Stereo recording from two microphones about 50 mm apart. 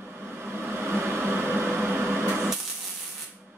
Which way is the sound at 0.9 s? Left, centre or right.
Right.